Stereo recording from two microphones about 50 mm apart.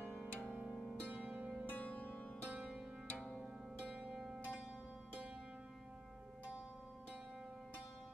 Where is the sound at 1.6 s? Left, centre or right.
Left.